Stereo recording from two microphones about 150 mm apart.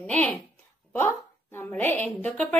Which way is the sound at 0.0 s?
10° left (ahead or behind).